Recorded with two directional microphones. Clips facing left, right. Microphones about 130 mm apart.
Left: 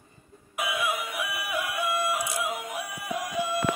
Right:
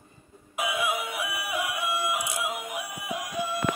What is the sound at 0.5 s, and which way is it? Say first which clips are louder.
Synthetic singing: right 1 dB; 25° right (ahead or behind).